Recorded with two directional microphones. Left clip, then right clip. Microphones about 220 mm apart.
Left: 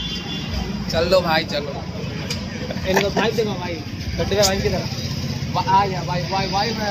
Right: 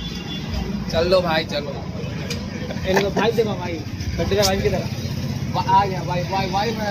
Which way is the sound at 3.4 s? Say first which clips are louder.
Right 1 dB; 30° right (ahead or behind).